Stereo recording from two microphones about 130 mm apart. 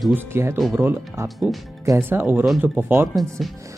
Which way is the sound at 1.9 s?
15° right (ahead or behind).